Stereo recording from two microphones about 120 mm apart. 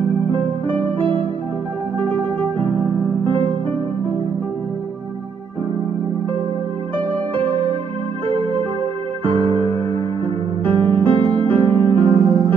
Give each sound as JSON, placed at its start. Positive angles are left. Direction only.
{"t": 2.0, "sound": "music", "side_deg": -40}
{"t": 8.3, "sound": "music", "side_deg": -45}
{"t": 10.7, "sound": "music", "side_deg": -45}